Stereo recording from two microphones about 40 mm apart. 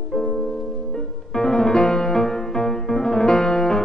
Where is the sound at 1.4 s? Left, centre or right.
Centre.